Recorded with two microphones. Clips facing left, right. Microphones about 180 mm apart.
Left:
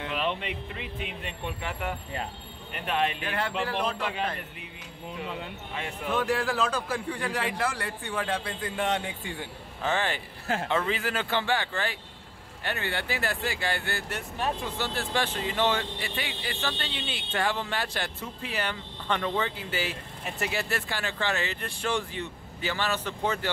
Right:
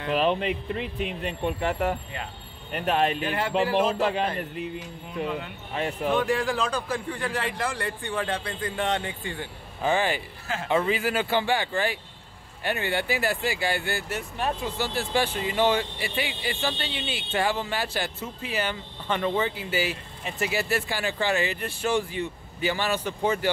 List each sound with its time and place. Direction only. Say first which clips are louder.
0.1 s speech: right 9 dB; 40° right (ahead or behind)
3.2 s a man's voice: right 5 dB; centre (ahead or behind)
4.0 s speech: right 6 dB; 35° right (ahead or behind)
6.1 s a man's voice: even; centre (ahead or behind)
9.8 s speech: right 4 dB; 10° right (ahead or behind)